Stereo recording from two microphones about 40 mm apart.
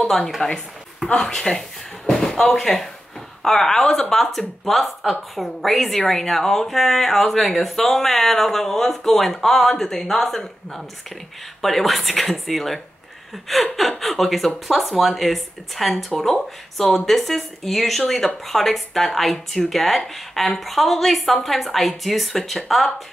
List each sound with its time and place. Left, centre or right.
0.4 s speech: left
1.0 s speech: centre
2.0 s slam: centre
2.5 s a woman's voice: centre